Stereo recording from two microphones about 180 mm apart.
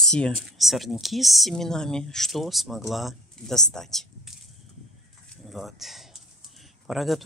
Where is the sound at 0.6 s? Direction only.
Centre (ahead or behind).